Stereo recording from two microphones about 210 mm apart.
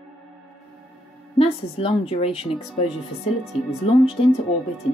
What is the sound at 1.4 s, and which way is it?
A woman's voice, 25° left (ahead or behind).